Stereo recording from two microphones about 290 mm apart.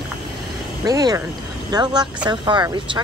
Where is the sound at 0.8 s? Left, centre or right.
Centre.